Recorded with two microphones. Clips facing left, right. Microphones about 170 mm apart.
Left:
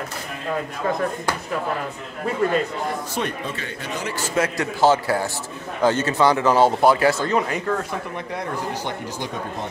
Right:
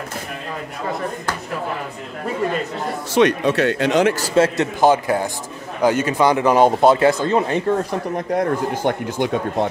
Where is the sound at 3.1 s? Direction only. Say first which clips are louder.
Right 11 dB; 80° right.